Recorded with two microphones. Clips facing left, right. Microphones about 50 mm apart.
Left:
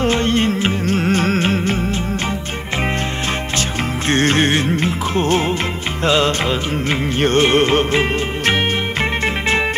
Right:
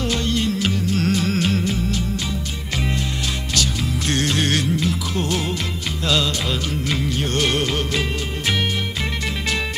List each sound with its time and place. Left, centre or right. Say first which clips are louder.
0.0 s music: left 6 dB; left
4.1 s music: left 6 dB; left
6.9 s music: left 8 dB; left